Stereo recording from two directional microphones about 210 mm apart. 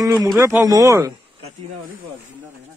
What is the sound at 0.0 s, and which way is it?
Speech, 15° right (ahead or behind).